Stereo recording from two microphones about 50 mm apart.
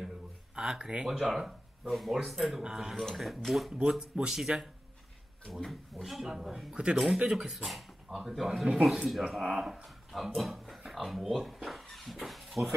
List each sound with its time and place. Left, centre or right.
0.6 s speech: centre
1.0 s speech: centre
2.6 s speech: centre
3.0 s speech: centre
4.0 s speech: centre
5.5 s speech: centre
6.7 s speech: centre